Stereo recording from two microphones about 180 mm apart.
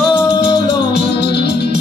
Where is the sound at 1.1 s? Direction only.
65° left (ahead or behind).